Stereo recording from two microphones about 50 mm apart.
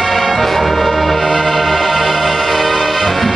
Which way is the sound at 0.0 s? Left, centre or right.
Centre.